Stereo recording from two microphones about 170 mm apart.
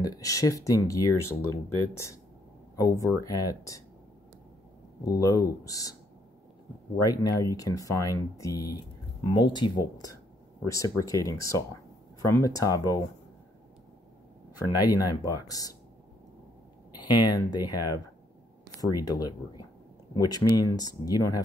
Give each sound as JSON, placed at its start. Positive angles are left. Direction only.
{"t": 0.0, "sound": "speech", "side_deg": 20}
{"t": 5.0, "sound": "speech", "side_deg": 20}
{"t": 7.0, "sound": "speech", "side_deg": 20}
{"t": 14.8, "sound": "speech", "side_deg": 20}
{"t": 16.9, "sound": "speech", "side_deg": 25}